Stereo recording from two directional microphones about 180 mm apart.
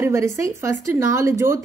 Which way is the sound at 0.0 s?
15° right (ahead or behind).